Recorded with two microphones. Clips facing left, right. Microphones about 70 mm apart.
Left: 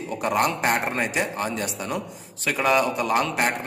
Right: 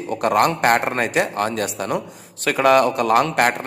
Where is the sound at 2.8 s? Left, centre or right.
Centre.